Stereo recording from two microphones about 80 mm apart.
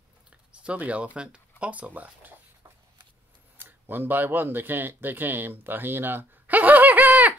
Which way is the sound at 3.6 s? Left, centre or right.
Right.